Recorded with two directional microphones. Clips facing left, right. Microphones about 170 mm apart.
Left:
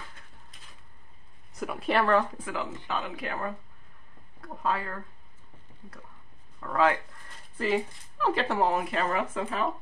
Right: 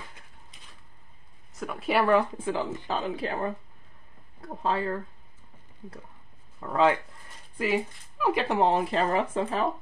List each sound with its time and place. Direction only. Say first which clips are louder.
1.5 s speech: even; centre (ahead or behind)
2.3 s speech: right 5 dB; 30° right (ahead or behind)
6.6 s speech: right 2 dB; 25° right (ahead or behind)
7.5 s speech: even; 10° right (ahead or behind); by 9.7 s 30° right (ahead or behind)